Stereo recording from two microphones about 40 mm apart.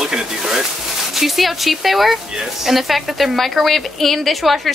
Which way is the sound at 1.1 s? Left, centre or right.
Centre.